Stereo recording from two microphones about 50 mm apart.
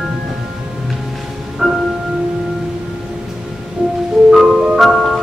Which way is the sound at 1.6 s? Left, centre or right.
Centre.